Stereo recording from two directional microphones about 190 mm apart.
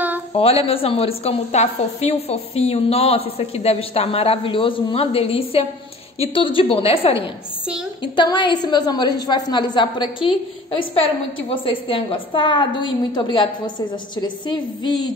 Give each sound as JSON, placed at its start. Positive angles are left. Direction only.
{"t": 0.3, "sound": "a woman's voice", "side_deg": 30}